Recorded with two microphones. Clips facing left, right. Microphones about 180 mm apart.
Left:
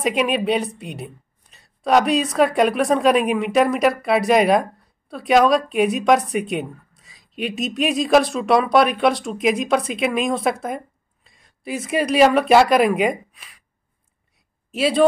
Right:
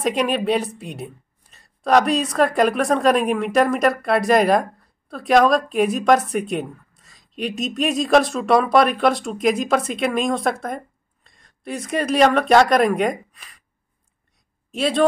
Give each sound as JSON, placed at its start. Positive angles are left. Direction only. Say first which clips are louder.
{"t": 0.0, "sound": "a woman's voice", "louder": "even", "side_deg": 0}
{"t": 14.7, "sound": "speech", "louder": "left 2 dB", "side_deg": 0}